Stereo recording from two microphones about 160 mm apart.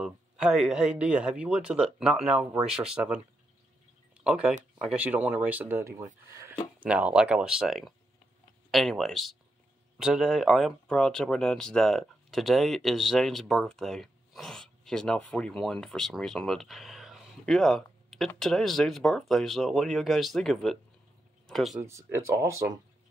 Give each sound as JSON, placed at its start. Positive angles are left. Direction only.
{"t": 0.0, "sound": "speech", "side_deg": -5}
{"t": 21.8, "sound": "speech", "side_deg": -20}